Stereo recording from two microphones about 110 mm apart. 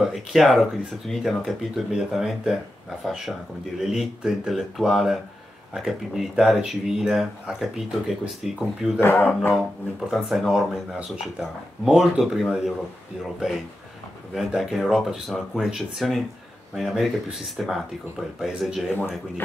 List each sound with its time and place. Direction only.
0.0 s speech: centre (ahead or behind)
9.0 s speech: 20° left (ahead or behind)
9.9 s speech: centre (ahead or behind)
14.3 s speech: centre (ahead or behind)